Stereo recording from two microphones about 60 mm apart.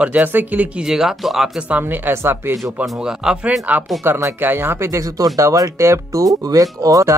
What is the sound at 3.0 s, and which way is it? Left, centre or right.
Speech, centre.